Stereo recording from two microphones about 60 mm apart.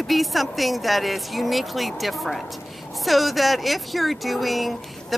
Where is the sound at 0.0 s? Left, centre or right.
Centre.